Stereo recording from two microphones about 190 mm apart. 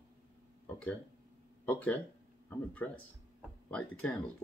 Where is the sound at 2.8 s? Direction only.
5° left (ahead or behind).